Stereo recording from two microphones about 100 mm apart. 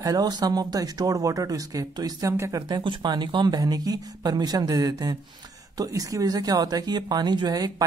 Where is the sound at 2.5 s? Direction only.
45° right (ahead or behind).